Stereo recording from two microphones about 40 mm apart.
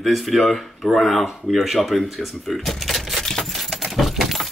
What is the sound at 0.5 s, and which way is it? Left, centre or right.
Speech, centre.